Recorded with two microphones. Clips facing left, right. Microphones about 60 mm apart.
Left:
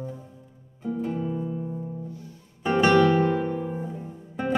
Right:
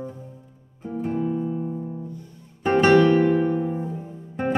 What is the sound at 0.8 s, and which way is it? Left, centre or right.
Music, right.